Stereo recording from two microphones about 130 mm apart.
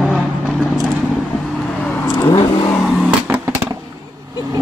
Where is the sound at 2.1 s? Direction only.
30° left (ahead or behind).